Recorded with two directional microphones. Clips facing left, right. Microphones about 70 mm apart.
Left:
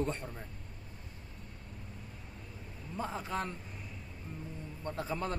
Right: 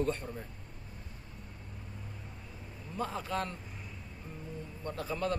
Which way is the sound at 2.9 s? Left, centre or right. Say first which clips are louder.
Right 2 dB; left.